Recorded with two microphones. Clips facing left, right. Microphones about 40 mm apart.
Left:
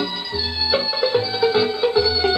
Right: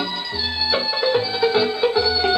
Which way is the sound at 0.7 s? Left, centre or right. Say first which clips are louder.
Even; centre.